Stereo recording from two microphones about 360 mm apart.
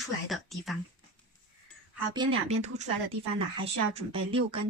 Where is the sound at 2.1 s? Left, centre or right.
Centre.